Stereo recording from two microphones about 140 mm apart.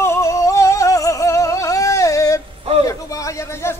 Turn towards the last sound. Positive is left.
turn(degrees=20)  # may be behind; listen again after turning